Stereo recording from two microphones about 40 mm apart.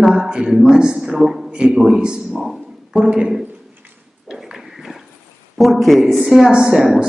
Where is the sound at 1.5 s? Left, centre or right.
Right.